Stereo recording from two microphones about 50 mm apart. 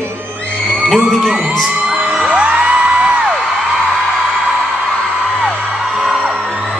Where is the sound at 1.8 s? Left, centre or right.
Right.